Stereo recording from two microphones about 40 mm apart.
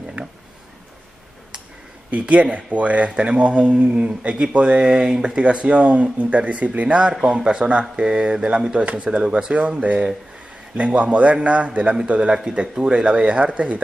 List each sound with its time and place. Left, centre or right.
2.0 s speech: right
4.8 s speech: centre; by 7.0 s right
7.4 s speech: right